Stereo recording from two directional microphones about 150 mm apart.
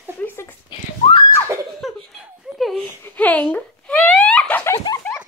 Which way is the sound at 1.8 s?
Centre (ahead or behind).